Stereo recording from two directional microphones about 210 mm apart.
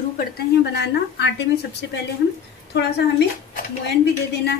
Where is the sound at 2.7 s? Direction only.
55° left (ahead or behind).